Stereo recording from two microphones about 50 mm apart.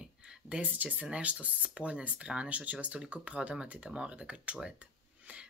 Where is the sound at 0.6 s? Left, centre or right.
Right.